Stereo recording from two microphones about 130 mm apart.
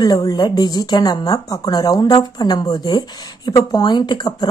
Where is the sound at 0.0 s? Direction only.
30° left (ahead or behind).